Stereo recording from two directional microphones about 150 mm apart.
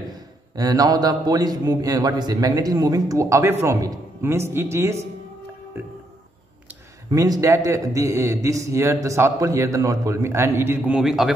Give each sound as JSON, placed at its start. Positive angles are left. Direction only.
{"t": 0.6, "sound": "a man's voice", "side_deg": -25}
{"t": 5.7, "sound": "music", "side_deg": -15}
{"t": 7.1, "sound": "a man's voice", "side_deg": -25}
{"t": 11.0, "sound": "a man's voice", "side_deg": -5}